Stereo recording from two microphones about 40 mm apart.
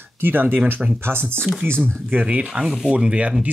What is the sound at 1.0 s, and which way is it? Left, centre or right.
Speech, right.